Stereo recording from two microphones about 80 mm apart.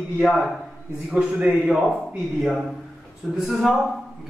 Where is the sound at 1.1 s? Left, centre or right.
Centre.